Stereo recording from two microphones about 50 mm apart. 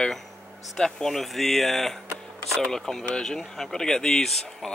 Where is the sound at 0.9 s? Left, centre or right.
Centre.